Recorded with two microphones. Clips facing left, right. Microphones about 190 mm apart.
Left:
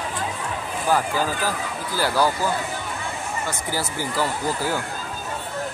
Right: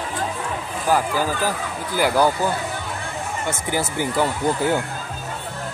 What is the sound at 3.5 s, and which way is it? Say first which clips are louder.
Speech: right 3 dB; 20° right (ahead or behind).